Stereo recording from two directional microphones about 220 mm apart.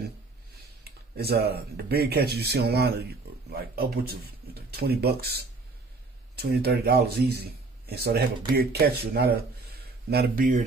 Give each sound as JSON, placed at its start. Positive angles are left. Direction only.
{"t": 0.8, "sound": "speech", "side_deg": -45}